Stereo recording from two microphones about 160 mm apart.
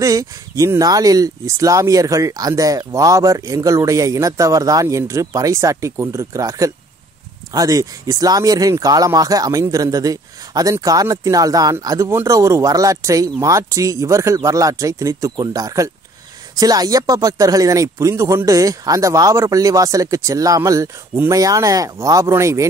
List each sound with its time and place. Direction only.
0.0 s speech: 20° right (ahead or behind)